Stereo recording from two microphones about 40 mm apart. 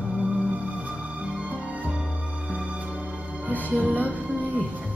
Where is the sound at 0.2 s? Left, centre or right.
Right.